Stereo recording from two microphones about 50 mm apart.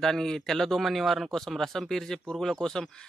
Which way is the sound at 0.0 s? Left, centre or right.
Centre.